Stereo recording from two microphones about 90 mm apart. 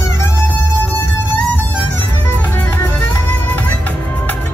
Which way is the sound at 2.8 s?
20° left (ahead or behind).